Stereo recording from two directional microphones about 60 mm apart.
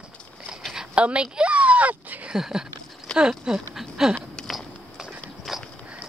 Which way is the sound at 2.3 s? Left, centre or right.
Centre.